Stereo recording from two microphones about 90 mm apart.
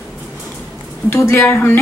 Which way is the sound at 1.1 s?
25° left (ahead or behind).